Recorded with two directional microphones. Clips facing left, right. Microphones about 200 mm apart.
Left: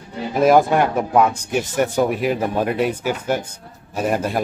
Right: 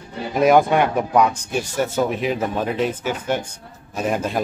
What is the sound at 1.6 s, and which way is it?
Speech, 20° left (ahead or behind).